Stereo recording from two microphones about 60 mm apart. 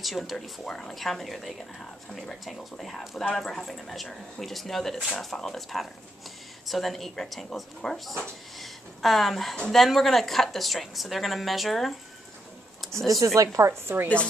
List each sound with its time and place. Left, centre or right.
0.0 s speech: centre
13.0 s a woman's voice: right